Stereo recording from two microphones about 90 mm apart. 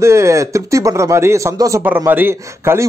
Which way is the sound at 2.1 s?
25° right (ahead or behind).